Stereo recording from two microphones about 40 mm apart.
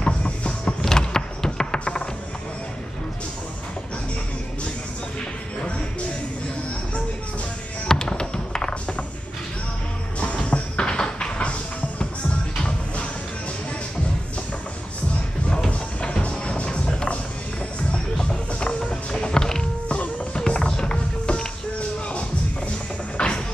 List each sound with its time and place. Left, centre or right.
0.0 s music: left
0.8 s a sound: centre
7.9 s music: centre
10.2 s a sound: left
12.6 s music: left
15.7 s music: left